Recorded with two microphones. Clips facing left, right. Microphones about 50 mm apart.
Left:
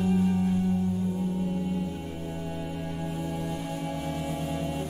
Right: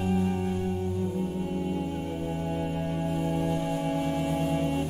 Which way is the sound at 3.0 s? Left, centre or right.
Right.